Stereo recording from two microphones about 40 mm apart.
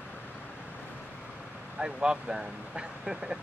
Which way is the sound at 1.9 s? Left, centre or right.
Centre.